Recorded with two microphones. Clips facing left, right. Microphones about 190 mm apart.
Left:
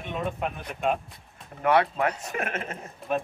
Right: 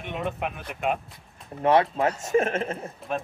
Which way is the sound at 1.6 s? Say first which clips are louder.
Right 2 dB; 25° right (ahead or behind).